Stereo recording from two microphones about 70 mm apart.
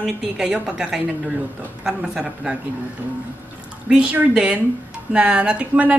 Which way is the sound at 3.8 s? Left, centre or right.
Centre.